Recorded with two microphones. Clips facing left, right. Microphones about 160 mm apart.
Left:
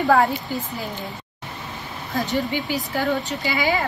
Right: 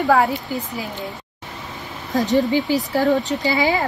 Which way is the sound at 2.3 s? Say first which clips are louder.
Right 8 dB; 35° right (ahead or behind).